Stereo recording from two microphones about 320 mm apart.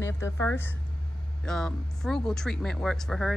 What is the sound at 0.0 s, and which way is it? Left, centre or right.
Speech, centre.